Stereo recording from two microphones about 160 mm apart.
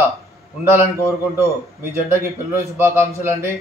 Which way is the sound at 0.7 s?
15° right (ahead or behind).